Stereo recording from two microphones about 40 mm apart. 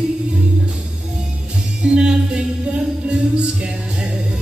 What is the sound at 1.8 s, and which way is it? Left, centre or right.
Music, right.